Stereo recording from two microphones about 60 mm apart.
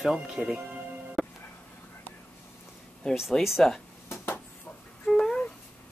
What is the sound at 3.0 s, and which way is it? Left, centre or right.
Speech, centre.